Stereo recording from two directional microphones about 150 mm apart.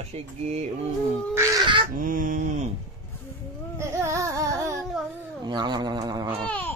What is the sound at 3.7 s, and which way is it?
Carnatic music, 20° right (ahead or behind).